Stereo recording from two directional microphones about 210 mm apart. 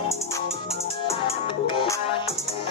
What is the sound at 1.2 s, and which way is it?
Music, 25° left (ahead or behind).